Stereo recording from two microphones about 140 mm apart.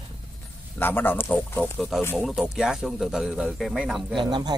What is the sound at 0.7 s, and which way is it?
A man's voice, 15° left (ahead or behind).